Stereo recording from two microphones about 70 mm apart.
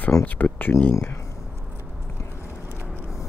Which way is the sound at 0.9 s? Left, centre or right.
Left.